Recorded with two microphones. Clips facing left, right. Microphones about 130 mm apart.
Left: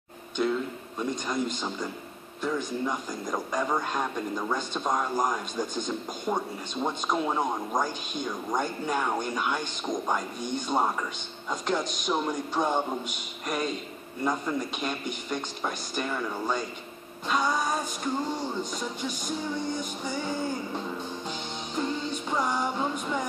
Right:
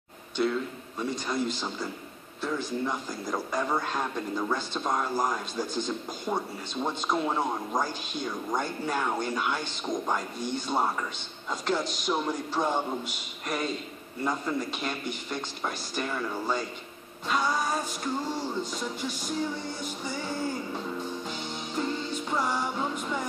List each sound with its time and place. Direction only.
0.4 s speech: 15° left (ahead or behind)
21.3 s music: 15° left (ahead or behind)